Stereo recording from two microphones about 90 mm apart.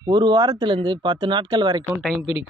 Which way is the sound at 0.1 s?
55° right (ahead or behind).